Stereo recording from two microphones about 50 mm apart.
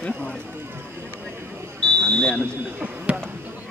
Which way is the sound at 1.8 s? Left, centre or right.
Centre.